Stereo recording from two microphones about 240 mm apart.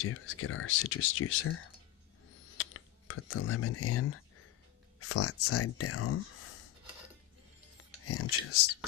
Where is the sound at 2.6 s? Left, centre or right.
Left.